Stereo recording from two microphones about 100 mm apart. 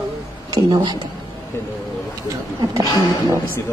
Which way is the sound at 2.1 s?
35° right (ahead or behind).